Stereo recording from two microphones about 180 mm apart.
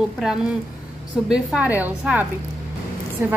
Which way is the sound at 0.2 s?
5° right (ahead or behind).